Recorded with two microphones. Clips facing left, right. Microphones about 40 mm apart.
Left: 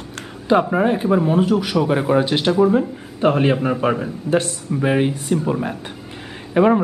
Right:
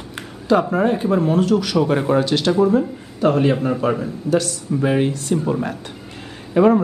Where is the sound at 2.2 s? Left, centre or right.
Centre.